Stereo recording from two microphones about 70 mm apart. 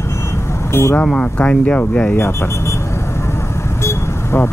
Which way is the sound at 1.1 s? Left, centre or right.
Centre.